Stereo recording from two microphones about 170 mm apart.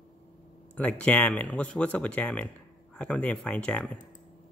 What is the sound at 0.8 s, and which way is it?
Speech, 10° left (ahead or behind).